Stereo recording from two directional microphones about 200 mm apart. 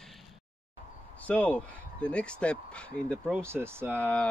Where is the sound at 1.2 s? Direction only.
5° left (ahead or behind).